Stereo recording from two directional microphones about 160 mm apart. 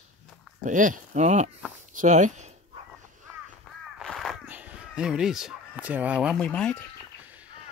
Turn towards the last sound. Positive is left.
turn(degrees=5)  # may be behind; listen again after turning